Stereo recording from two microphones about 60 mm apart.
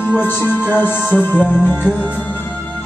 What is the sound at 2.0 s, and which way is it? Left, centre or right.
Music, right.